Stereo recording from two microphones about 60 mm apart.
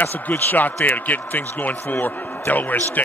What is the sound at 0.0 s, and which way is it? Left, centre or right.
Speech, left.